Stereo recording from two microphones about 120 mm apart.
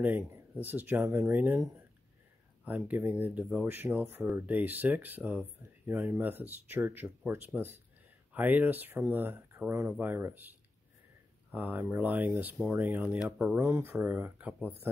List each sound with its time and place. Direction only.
0.0 s speech: 15° right (ahead or behind)
11.5 s speech: 15° right (ahead or behind)
13.6 s speech: 20° right (ahead or behind)